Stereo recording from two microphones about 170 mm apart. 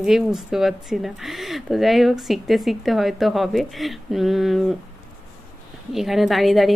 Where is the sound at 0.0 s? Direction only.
Centre (ahead or behind).